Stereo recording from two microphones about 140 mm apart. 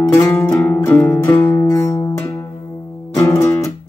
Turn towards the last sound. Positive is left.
turn(degrees=25)  # may be behind; listen again after turning